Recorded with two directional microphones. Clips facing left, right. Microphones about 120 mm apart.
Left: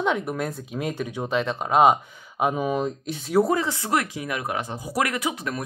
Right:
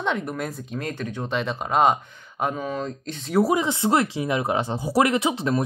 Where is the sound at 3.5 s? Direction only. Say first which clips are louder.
Right 3 dB; 20° right (ahead or behind).